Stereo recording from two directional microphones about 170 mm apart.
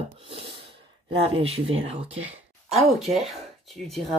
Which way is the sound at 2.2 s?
10° right (ahead or behind).